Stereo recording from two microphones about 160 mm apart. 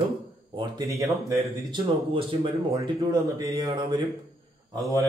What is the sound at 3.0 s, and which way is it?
Speech, 20° right (ahead or behind).